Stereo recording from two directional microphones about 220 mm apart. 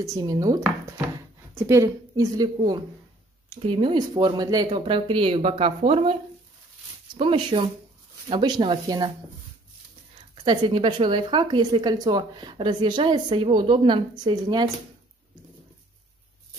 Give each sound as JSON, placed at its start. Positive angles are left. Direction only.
{"t": 0.0, "sound": "a woman's voice", "side_deg": -15}
{"t": 7.2, "sound": "speech", "side_deg": -25}
{"t": 10.4, "sound": "speech", "side_deg": -20}